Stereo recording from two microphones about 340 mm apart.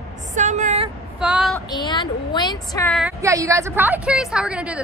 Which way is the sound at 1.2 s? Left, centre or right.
Centre.